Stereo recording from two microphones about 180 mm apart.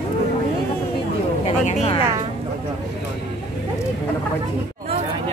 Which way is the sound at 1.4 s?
35° left (ahead or behind).